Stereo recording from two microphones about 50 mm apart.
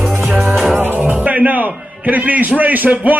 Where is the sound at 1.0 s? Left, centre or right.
Right.